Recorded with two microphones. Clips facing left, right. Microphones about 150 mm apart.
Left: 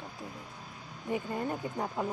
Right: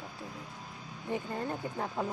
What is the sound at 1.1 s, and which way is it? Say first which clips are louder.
Speech: left 2 dB; 15° left (ahead or behind).